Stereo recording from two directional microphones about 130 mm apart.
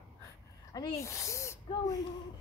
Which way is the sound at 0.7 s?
25° left (ahead or behind).